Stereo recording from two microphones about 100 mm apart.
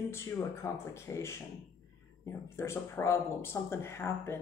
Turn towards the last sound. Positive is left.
turn(degrees=25)  # may be behind; listen again after turning